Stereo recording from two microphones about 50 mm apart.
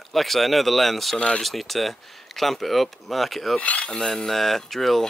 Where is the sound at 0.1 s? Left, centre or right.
Centre.